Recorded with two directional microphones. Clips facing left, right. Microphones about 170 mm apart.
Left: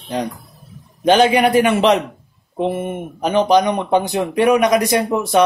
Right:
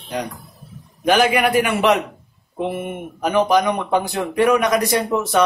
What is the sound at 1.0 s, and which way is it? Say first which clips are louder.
Speech: left 3 dB; 25° left (ahead or behind).